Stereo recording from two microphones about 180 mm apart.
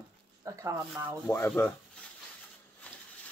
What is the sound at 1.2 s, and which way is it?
Speech, 10° left (ahead or behind).